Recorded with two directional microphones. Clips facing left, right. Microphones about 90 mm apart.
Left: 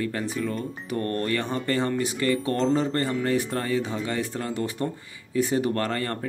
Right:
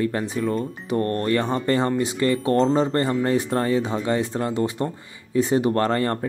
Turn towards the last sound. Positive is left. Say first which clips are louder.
# right 6 dB
turn(degrees=-35)  # may be behind; listen again after turning